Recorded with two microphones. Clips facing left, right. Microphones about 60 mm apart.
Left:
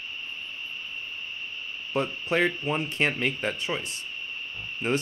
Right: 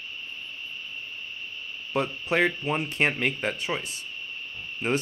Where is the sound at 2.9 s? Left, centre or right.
Right.